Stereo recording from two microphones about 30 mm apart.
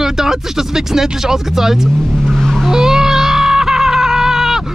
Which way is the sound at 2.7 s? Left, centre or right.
Centre.